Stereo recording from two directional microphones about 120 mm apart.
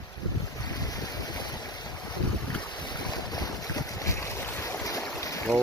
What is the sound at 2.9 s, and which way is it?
Boat, 35° left (ahead or behind).